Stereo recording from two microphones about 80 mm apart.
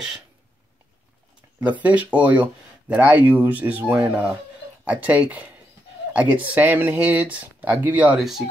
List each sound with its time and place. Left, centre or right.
1.6 s speech: centre
8.2 s speech: centre